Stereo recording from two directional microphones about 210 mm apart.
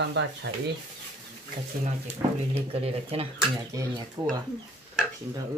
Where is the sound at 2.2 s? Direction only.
30° right (ahead or behind).